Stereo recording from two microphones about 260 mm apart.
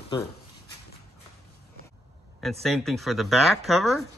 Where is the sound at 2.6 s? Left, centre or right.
Centre.